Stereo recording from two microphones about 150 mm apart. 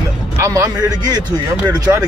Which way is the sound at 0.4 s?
20° right (ahead or behind).